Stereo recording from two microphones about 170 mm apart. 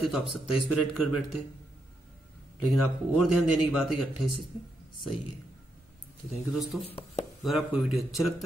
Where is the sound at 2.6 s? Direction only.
Centre (ahead or behind).